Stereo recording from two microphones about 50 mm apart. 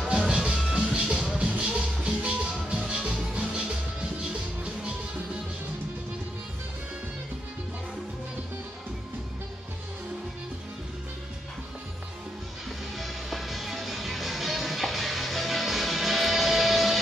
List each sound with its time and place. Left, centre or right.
0.0 s music: centre
0.3 s music: centre
12.9 s music: centre